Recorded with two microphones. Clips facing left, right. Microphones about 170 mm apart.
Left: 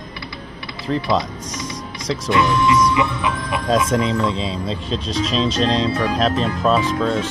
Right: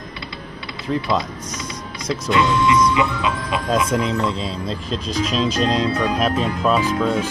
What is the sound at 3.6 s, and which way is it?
Speech, 5° right (ahead or behind).